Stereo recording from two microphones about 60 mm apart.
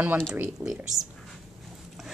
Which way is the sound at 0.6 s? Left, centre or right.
Right.